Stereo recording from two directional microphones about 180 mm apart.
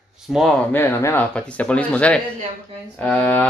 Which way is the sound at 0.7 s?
10° left (ahead or behind).